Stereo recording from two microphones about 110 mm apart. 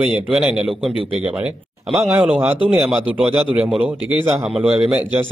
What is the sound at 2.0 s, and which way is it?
Speech, 25° right (ahead or behind).